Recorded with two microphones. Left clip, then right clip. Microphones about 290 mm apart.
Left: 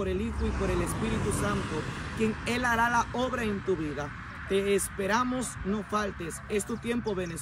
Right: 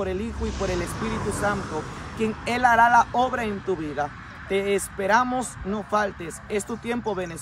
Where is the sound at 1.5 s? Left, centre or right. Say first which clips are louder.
Right 4 dB; centre.